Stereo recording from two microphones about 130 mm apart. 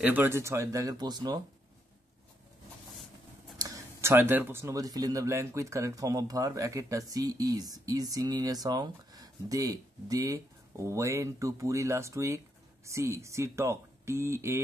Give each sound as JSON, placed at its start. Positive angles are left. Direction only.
{"t": 0.0, "sound": "speech", "side_deg": -15}
{"t": 3.5, "sound": "speech", "side_deg": -25}